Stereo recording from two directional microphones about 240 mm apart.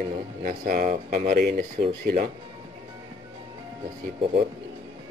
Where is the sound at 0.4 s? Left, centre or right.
Right.